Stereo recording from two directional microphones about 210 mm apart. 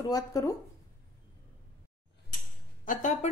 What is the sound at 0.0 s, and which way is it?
Speech, 15° left (ahead or behind).